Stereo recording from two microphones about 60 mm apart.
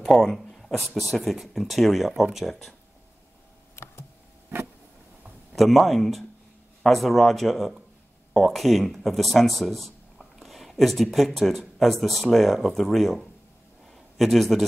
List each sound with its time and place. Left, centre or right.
0.1 s speech: centre
3.7 s computer keyboard: left
5.5 s speech: centre
13.9 s a sound: centre